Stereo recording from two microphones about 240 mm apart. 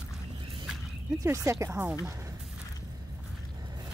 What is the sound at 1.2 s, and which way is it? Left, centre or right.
Speech, centre.